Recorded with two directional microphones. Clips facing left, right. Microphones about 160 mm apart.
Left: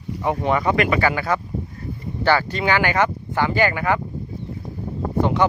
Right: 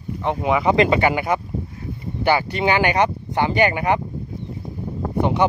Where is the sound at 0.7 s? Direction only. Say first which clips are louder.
Right 5 dB; 25° right (ahead or behind).